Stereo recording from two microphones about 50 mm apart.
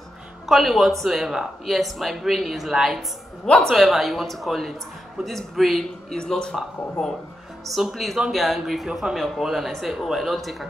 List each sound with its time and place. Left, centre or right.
0.5 s speech: centre
3.4 s a woman's voice: left
3.7 s speech: centre
6.1 s speech: centre